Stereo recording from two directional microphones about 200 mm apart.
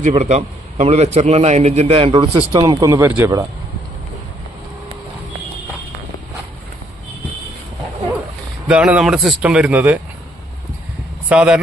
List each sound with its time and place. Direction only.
0.0 s a man's voice: 35° right (ahead or behind); by 3.4 s 15° right (ahead or behind)
8.6 s speech: 5° right (ahead or behind)
11.2 s speech: 5° right (ahead or behind)